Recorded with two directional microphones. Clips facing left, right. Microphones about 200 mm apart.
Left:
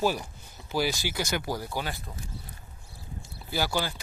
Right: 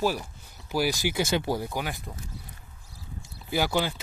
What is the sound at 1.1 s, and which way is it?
Speech, 25° right (ahead or behind).